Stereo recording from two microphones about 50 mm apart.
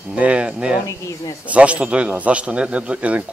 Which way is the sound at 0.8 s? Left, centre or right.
Left.